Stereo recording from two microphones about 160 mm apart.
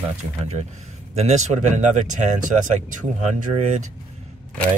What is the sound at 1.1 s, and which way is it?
Speech, 45° right (ahead or behind).